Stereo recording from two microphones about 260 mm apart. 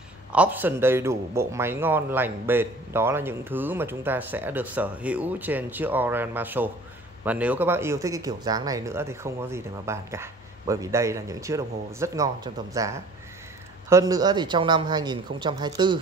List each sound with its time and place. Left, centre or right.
0.3 s speech: centre